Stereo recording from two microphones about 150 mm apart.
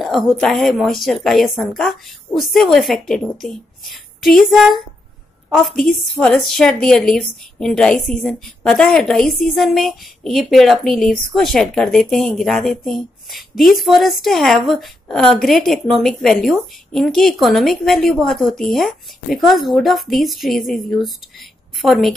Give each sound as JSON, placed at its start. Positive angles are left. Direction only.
{"t": 0.0, "sound": "a woman's voice", "side_deg": 0}